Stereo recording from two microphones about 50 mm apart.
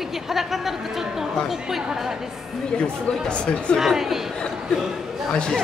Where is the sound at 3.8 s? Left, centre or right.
Centre.